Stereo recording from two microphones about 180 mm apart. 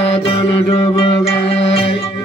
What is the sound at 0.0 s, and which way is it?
Music, 35° left (ahead or behind).